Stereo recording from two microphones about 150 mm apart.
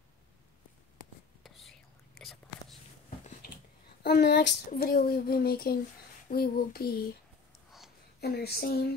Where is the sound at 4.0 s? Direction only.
90° left.